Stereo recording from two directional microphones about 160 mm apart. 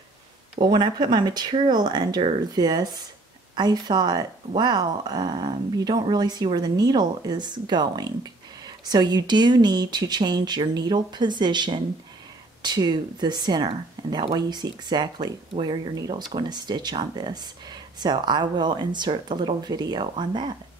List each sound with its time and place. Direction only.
0.6 s speech: 25° right (ahead or behind)